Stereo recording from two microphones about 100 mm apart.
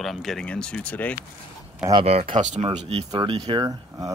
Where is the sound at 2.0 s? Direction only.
90° right.